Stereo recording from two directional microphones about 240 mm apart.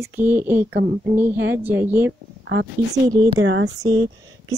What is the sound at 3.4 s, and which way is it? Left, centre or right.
Speech, right.